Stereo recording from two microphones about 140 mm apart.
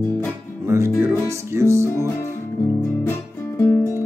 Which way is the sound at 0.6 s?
20° right (ahead or behind).